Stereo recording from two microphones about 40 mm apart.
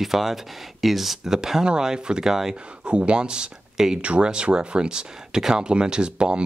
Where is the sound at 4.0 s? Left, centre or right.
Right.